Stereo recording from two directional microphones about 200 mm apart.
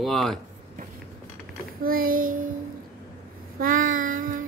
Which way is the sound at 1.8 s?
45° right (ahead or behind).